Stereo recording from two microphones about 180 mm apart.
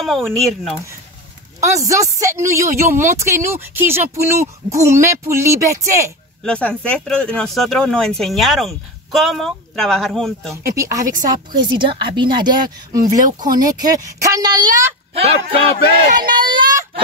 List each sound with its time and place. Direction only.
0.0 s speech: centre (ahead or behind)
1.6 s speech: 15° right (ahead or behind)
6.4 s speech: 5° left (ahead or behind)
10.5 s a woman's voice: 15° right (ahead or behind)
16.2 s speech: 25° right (ahead or behind)